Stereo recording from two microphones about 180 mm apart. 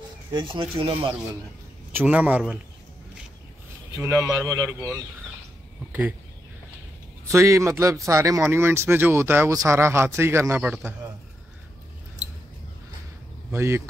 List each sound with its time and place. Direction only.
0.3 s speech: 30° right (ahead or behind)
1.9 s speech: 10° right (ahead or behind)
4.0 s speech: 15° right (ahead or behind)
5.9 s a sound: 10° right (ahead or behind)
7.2 s speech: 15° right (ahead or behind)
13.5 s speech: 15° right (ahead or behind)